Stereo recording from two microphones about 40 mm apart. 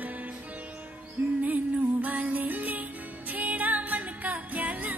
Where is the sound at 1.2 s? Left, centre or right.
Right.